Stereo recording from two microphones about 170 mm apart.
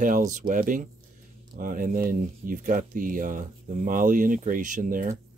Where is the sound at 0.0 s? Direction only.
45° right (ahead or behind).